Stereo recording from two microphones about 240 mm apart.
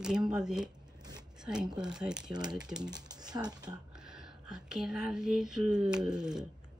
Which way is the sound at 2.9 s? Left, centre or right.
Centre.